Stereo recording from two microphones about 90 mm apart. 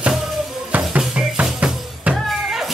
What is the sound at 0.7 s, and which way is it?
Music, 10° right (ahead or behind).